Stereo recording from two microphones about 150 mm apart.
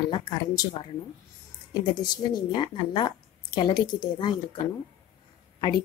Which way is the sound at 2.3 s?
35° left (ahead or behind).